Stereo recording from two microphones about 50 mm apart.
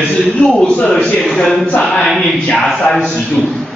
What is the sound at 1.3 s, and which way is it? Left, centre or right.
Speech, centre.